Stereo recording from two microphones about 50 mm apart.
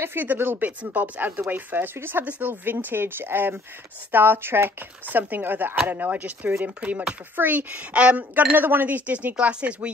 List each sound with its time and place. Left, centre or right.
0.0 s speech: right
0.7 s speech: right
2.2 s speech: right
2.7 s speech: right
5.0 s speech: right